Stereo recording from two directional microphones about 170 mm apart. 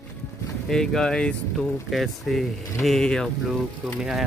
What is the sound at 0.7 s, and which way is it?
Speech, 5° left (ahead or behind).